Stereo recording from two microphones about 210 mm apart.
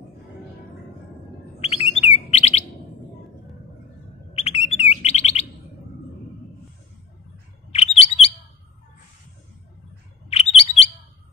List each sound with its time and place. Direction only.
1.6 s bird: 30° left (ahead or behind)
4.3 s bird: 30° left (ahead or behind)
7.7 s chirp: 30° left (ahead or behind)
10.3 s bird: 30° left (ahead or behind)